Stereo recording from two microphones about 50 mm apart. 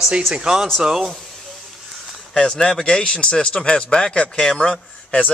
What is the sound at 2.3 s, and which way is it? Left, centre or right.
Speech, centre.